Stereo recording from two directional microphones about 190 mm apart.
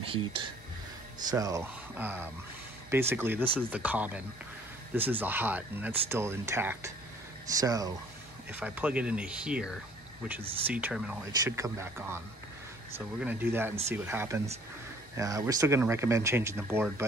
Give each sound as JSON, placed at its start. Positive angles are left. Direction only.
{"t": 0.0, "sound": "speech", "side_deg": -30}
{"t": 1.3, "sound": "speech", "side_deg": -15}
{"t": 5.2, "sound": "speech", "side_deg": -10}
{"t": 10.7, "sound": "speech", "side_deg": -5}